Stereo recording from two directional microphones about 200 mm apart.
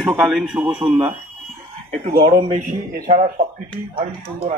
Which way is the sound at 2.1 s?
45° right (ahead or behind).